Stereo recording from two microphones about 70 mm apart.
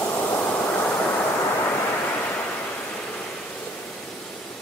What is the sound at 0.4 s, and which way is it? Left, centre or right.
Vehicle, left.